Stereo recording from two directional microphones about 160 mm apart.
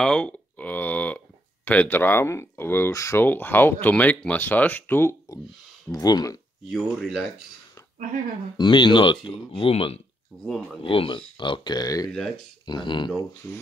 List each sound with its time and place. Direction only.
0.0 s speech: 5° left (ahead or behind); by 6.4 s 25° left (ahead or behind)
6.7 s speech: centre (ahead or behind)
8.5 s speech: 30° left (ahead or behind)
10.4 s speech: 5° left (ahead or behind)
10.8 s speech: 35° left (ahead or behind)
12.1 s speech: 5° left (ahead or behind)
12.6 s speech: 30° left (ahead or behind)
13.4 s speech: 10° left (ahead or behind)